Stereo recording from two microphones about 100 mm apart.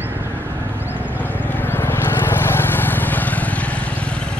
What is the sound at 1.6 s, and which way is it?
Vehicle, 20° left (ahead or behind).